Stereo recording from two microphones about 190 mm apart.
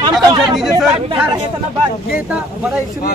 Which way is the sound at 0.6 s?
5° right (ahead or behind).